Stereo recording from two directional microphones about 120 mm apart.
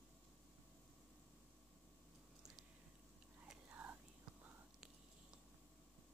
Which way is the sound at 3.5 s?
15° right (ahead or behind).